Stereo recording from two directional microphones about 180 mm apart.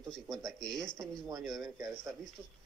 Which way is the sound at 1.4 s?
Centre (ahead or behind).